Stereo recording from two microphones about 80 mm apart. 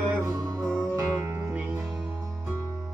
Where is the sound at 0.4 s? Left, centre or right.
Right.